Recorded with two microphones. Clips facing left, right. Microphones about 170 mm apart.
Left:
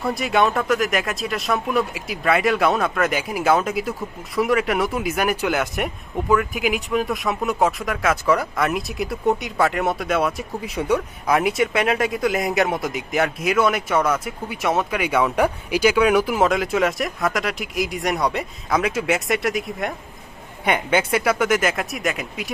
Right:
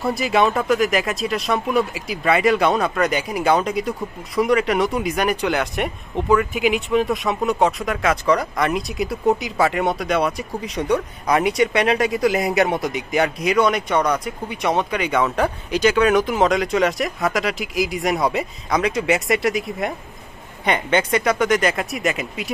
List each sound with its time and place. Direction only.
0.0 s speech: centre (ahead or behind)